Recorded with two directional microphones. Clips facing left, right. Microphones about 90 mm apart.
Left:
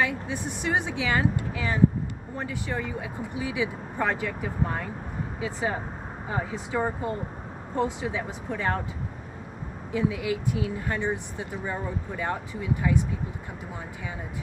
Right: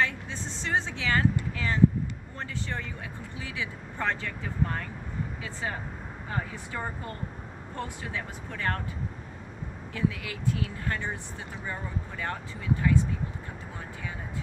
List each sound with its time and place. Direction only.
0.0 s speech: 15° left (ahead or behind)
9.9 s speech: 15° left (ahead or behind)